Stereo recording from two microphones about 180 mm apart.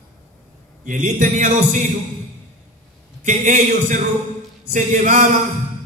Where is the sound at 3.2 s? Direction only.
45° right (ahead or behind).